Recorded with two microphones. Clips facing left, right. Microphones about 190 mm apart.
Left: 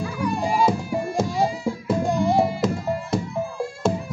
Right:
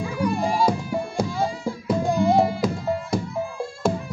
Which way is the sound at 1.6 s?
Centre (ahead or behind).